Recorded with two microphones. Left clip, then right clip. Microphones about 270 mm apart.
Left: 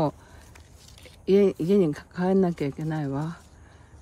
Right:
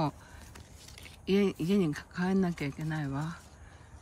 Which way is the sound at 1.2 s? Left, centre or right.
Centre.